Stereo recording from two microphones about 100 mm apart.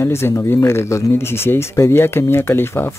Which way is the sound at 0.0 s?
25° left (ahead or behind).